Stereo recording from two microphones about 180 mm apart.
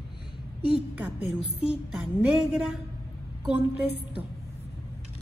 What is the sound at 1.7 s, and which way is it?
Speech, centre (ahead or behind).